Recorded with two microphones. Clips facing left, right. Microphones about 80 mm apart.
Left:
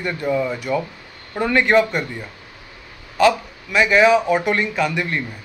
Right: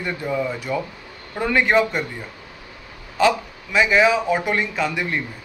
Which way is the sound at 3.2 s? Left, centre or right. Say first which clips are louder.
Left 2 dB; centre.